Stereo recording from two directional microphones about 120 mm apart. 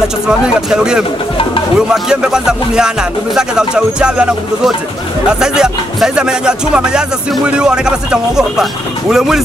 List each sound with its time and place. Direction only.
0.6 s music: 5° right (ahead or behind)
2.0 s music: 5° right (ahead or behind)